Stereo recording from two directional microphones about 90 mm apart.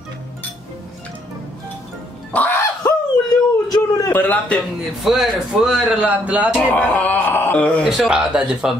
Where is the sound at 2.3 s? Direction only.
25° left (ahead or behind).